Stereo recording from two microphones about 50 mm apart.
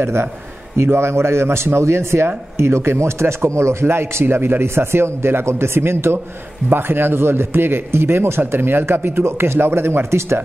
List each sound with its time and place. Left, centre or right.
0.0 s speech: right
3.8 s speech: right